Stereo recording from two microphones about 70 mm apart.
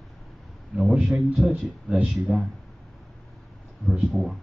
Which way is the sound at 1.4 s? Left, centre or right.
Centre.